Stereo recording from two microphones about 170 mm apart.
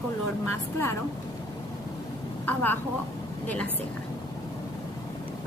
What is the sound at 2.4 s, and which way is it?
A woman's voice, 10° left (ahead or behind).